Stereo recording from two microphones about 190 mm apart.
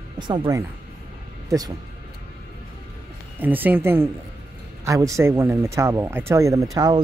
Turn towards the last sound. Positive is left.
turn(degrees=-20)  # may be behind; listen again after turning